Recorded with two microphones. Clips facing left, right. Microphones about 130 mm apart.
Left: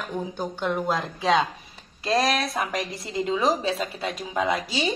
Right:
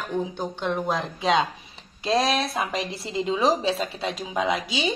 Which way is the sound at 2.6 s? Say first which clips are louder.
Right 1 dB; 25° right (ahead or behind).